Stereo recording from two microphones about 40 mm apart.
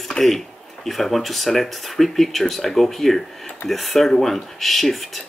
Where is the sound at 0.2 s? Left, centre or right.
Left.